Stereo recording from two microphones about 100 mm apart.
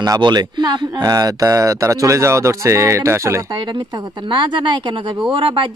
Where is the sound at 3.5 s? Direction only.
45° right (ahead or behind).